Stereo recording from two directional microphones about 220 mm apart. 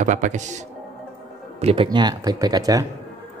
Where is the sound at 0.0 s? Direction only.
35° right (ahead or behind).